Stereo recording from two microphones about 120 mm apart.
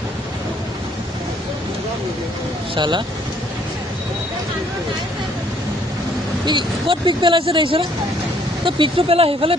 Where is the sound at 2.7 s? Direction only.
40° right (ahead or behind).